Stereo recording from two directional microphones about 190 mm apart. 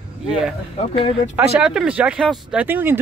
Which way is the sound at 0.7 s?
35° left (ahead or behind).